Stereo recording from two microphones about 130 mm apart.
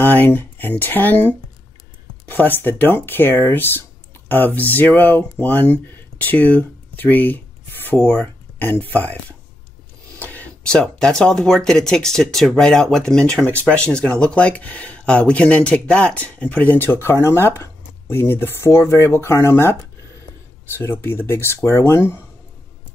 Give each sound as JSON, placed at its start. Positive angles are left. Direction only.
{"t": 0.0, "sound": "speech", "side_deg": 15}
{"t": 10.1, "sound": "speech", "side_deg": 10}
{"t": 20.7, "sound": "speech", "side_deg": 20}